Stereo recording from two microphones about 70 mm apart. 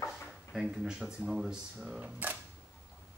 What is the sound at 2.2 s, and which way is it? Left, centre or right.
Camera, right.